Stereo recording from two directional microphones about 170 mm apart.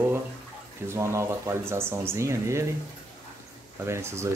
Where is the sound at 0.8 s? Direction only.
15° right (ahead or behind).